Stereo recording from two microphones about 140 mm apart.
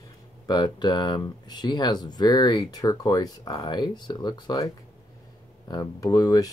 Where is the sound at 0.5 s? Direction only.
30° left (ahead or behind).